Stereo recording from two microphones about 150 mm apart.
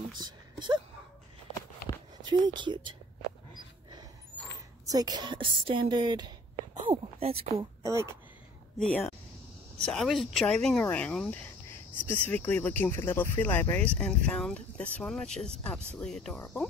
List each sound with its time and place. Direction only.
0.2 s a sound: 30° right (ahead or behind)
2.2 s speech: 30° right (ahead or behind)
4.8 s a woman's voice: 25° right (ahead or behind)
6.9 s speech: 40° right (ahead or behind)
7.5 s a woman's voice: 20° right (ahead or behind)
8.7 s speech: 5° left (ahead or behind)